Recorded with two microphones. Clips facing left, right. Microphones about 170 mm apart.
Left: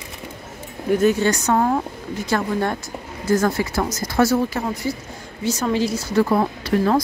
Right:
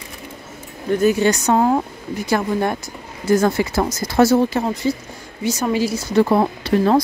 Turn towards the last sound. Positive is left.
turn(degrees=-25)  # may be behind; listen again after turning